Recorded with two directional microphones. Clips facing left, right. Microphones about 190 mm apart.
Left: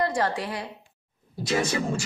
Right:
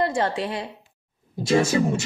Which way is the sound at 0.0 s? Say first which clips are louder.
Right 2 dB; 25° right (ahead or behind).